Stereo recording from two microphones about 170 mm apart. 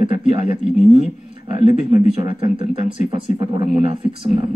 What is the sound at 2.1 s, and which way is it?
Speech, 30° right (ahead or behind).